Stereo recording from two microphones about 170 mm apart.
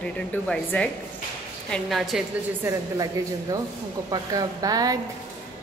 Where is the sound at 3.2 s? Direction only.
20° right (ahead or behind).